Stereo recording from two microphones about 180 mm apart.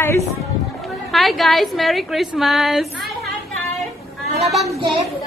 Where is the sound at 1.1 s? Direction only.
Centre (ahead or behind).